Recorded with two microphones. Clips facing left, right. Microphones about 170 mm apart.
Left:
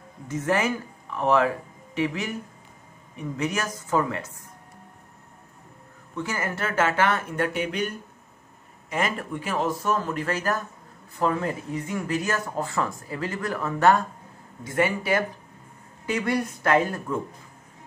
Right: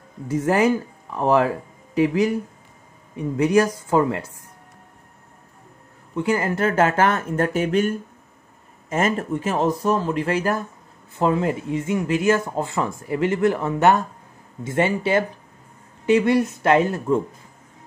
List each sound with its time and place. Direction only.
0.3 s speech: 30° right (ahead or behind)
3.3 s speech: 30° right (ahead or behind)
6.1 s speech: 30° right (ahead or behind)